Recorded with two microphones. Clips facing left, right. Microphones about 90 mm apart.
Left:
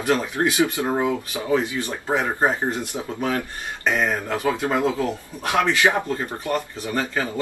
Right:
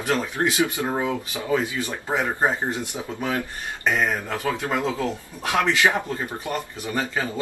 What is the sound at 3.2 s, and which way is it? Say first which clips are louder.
Speech: left 2 dB; 20° right (ahead or behind).